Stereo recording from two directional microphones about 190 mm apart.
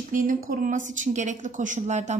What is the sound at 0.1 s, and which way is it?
A woman's voice, 45° right (ahead or behind).